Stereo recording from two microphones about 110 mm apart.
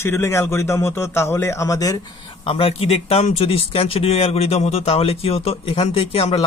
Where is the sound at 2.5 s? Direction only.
60° left (ahead or behind).